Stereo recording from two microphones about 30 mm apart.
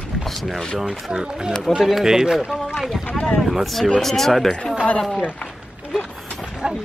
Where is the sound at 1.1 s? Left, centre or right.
Right.